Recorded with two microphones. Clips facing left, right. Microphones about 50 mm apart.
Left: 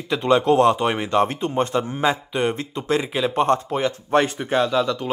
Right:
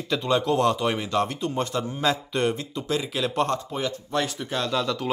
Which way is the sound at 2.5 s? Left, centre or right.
Left.